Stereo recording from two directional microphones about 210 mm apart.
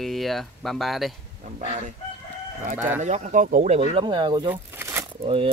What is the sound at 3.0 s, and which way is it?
Speech, 35° right (ahead or behind).